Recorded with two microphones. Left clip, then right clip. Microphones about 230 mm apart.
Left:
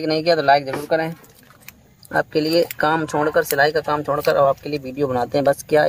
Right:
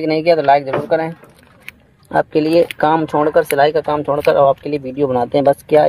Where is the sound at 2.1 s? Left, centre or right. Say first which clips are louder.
Right 5 dB; centre.